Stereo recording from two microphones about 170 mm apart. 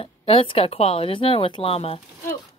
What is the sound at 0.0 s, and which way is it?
Speech, 35° left (ahead or behind).